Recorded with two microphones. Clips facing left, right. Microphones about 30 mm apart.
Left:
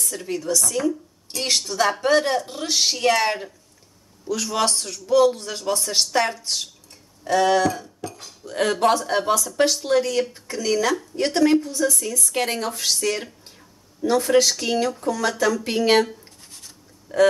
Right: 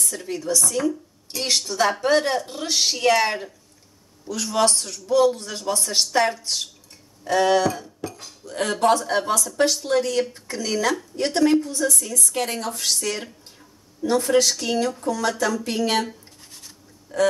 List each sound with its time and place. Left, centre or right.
0.0 s a woman's voice: centre
7.2 s cutlery: centre
8.5 s a woman's voice: centre
16.1 s scratch: centre
17.1 s speech: left